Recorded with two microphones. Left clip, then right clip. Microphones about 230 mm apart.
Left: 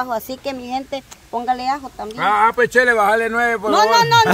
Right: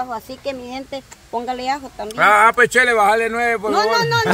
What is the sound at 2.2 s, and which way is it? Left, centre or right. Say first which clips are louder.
Speech: right 3 dB; right.